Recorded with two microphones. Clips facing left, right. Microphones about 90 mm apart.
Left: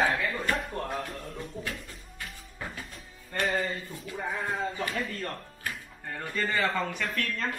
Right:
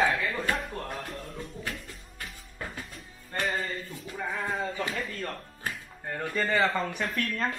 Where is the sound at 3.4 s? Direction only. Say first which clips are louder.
Left 2 dB; centre (ahead or behind).